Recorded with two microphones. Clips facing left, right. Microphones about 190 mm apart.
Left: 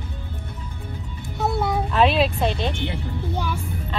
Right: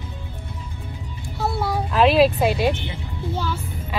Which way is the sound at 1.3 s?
20° left (ahead or behind).